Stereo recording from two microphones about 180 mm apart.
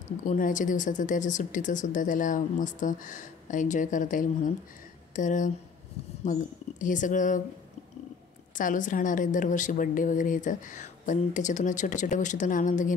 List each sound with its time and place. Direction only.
0.3 s speech: 45° left (ahead or behind)
8.5 s speech: 45° left (ahead or behind)